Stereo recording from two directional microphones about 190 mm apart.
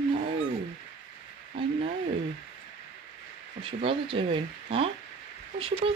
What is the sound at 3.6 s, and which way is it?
Speech, 30° right (ahead or behind).